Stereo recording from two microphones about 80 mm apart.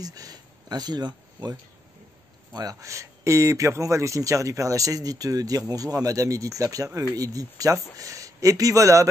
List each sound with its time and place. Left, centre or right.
0.0 s speech: right
2.5 s speech: right